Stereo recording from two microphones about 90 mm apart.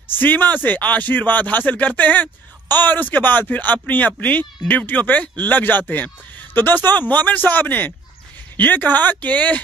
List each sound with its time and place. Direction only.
0.1 s speech: 20° left (ahead or behind)